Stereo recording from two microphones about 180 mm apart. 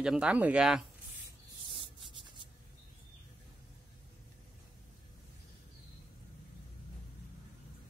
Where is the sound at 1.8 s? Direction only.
25° right (ahead or behind).